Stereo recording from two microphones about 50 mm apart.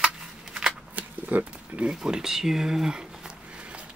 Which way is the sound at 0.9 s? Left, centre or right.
Right.